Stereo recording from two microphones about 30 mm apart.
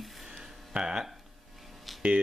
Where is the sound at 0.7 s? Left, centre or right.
Right.